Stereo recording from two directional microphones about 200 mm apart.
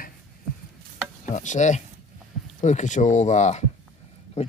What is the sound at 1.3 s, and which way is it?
Speech, 35° left (ahead or behind).